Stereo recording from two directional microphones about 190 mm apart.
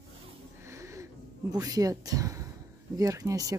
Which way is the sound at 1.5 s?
20° right (ahead or behind).